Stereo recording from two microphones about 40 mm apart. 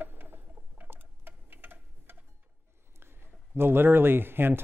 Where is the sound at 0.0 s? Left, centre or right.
Right.